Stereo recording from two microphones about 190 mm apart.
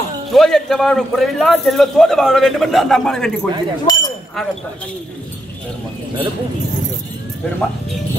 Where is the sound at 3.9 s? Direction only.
20° left (ahead or behind).